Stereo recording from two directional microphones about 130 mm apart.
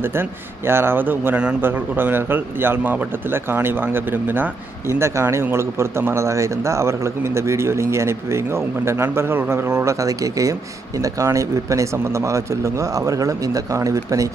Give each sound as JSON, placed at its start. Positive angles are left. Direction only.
{"t": 0.7, "sound": "a man's voice", "side_deg": -20}